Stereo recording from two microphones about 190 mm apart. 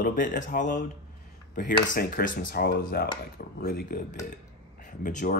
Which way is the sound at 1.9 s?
45° left (ahead or behind).